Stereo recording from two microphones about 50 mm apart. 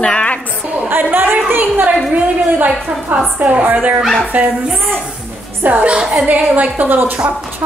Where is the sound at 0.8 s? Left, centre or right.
Right.